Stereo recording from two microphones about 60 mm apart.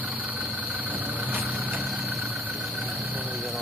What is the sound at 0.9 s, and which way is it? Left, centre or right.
Vehicle, right.